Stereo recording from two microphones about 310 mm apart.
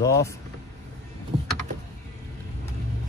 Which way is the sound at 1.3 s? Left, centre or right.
Right.